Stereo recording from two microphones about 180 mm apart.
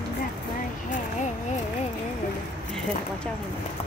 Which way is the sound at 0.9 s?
40° left (ahead or behind).